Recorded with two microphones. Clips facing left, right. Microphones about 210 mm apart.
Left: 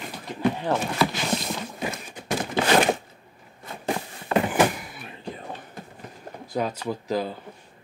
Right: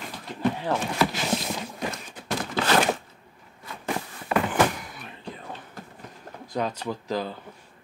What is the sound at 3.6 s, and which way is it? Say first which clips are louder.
Walk: left 2 dB; 25° left (ahead or behind).